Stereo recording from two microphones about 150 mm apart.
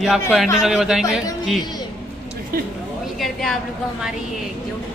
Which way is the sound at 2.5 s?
90° right.